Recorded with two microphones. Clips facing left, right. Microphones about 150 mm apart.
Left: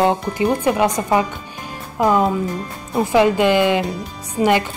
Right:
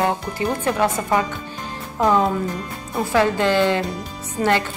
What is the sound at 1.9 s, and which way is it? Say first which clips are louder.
Speech: left 2 dB; 5° left (ahead or behind).